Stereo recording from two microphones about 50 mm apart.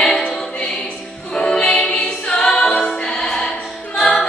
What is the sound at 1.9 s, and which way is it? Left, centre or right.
A capella, centre.